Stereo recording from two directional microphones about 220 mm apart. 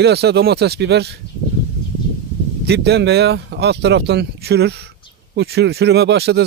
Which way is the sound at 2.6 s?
50° right (ahead or behind).